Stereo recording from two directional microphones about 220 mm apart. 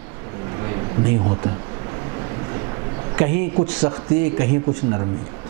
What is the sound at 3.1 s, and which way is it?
A man's voice, 15° right (ahead or behind).